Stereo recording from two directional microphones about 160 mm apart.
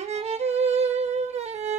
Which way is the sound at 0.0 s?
40° right (ahead or behind).